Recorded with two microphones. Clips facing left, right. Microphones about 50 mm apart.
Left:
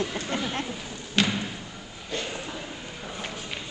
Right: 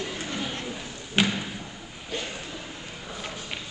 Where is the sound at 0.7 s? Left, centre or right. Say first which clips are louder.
Even; centre.